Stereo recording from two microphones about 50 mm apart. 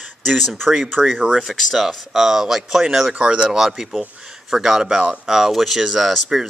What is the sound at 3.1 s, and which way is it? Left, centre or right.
Speech, right.